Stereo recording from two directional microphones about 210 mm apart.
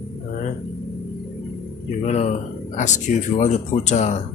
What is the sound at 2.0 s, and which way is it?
Speech, 30° left (ahead or behind).